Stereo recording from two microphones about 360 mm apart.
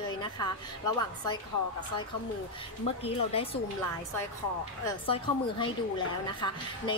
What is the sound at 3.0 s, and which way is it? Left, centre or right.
Speech, centre.